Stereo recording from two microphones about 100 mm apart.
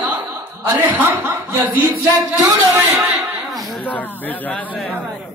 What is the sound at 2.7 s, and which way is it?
Speech, 30° right (ahead or behind).